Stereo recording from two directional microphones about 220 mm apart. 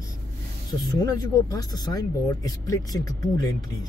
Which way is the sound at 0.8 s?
15° left (ahead or behind).